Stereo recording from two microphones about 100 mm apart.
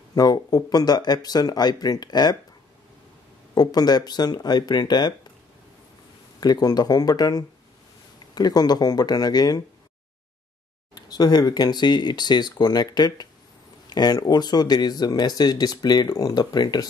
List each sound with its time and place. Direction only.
0.1 s speech: 40° left (ahead or behind)
3.5 s speech: 40° left (ahead or behind)
6.4 s speech: 40° left (ahead or behind)
11.0 s speech: 45° left (ahead or behind)